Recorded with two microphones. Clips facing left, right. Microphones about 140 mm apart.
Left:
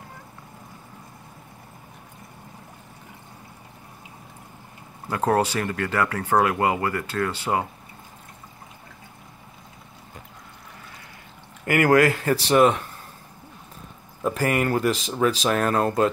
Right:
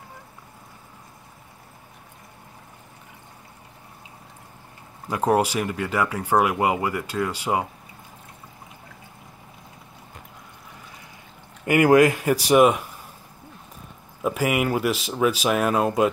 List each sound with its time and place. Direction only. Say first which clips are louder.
5.1 s speech: right 1 dB; 10° right (ahead or behind)
11.6 s speech: right 2 dB; 20° right (ahead or behind)
14.2 s speech: even; 10° right (ahead or behind)